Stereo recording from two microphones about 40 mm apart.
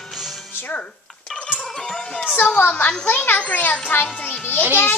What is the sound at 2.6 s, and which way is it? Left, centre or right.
Speech, left.